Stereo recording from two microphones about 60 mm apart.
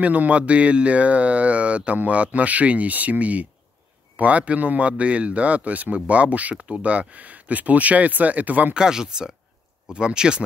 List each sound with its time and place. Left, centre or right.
0.0 s speech: right
8.7 s speech: centre